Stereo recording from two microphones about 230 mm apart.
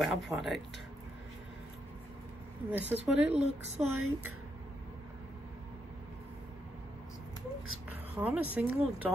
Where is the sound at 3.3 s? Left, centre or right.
Right.